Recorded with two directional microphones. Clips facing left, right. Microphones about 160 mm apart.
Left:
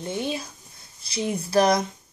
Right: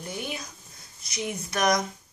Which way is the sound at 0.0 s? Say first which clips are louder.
Left 6 dB; 25° left (ahead or behind).